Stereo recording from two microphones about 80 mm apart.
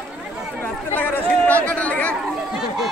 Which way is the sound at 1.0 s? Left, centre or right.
Left.